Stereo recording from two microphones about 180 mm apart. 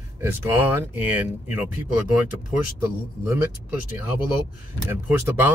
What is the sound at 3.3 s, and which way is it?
Speech, 15° right (ahead or behind).